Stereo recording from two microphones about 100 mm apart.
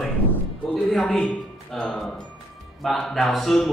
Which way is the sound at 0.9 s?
5° left (ahead or behind).